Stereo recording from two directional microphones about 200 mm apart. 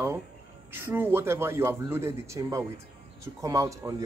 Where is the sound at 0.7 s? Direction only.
10° right (ahead or behind).